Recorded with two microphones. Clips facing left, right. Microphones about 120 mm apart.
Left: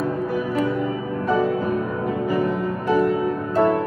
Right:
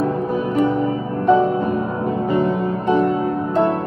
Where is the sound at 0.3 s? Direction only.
25° right (ahead or behind).